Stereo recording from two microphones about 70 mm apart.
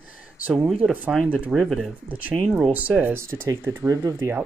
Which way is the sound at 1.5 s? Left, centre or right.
Centre.